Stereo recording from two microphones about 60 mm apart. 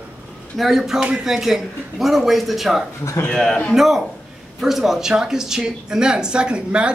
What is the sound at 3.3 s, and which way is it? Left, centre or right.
Speech, centre.